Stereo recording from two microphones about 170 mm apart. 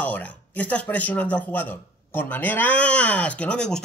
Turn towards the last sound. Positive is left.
turn(degrees=5)  # may be behind; listen again after turning